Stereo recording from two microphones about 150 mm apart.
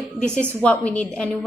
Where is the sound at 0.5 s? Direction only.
10° left (ahead or behind).